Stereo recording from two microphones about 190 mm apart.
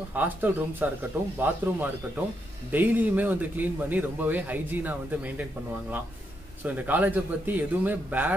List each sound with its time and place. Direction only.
0.1 s a man's voice: 10° right (ahead or behind)